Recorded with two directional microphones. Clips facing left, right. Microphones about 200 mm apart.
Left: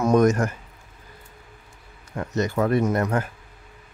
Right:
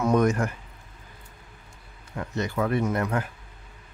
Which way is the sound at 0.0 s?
45° left (ahead or behind).